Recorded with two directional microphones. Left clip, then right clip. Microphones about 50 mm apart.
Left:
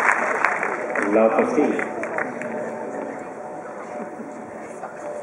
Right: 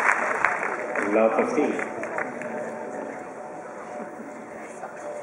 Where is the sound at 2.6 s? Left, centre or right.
Centre.